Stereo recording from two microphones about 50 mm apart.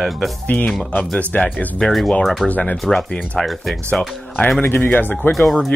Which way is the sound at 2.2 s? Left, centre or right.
Centre.